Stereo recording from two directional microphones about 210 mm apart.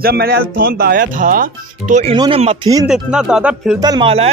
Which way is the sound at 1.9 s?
30° right (ahead or behind).